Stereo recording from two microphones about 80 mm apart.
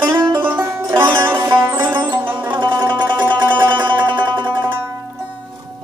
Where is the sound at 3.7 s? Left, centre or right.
Right.